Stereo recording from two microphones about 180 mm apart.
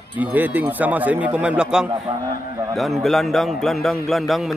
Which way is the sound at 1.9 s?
20° right (ahead or behind).